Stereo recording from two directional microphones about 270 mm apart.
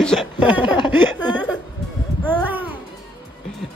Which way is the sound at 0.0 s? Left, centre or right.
Centre.